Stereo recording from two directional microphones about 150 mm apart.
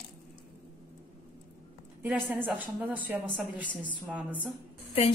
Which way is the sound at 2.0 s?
10° right (ahead or behind).